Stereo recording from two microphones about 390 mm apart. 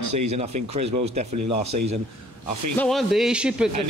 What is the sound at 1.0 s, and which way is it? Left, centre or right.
Speech, centre.